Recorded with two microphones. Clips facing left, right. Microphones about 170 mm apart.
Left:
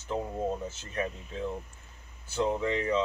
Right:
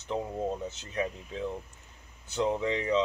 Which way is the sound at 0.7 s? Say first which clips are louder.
Right 1 dB; 15° right (ahead or behind).